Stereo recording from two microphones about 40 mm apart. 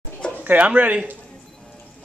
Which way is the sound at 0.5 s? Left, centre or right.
Right.